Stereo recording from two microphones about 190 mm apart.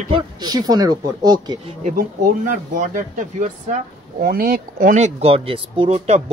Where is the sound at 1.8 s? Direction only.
45° right (ahead or behind).